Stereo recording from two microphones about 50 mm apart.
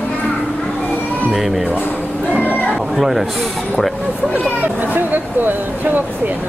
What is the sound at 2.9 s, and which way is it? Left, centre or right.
Speech, centre.